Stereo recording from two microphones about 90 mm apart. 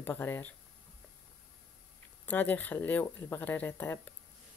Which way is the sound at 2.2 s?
20° left (ahead or behind).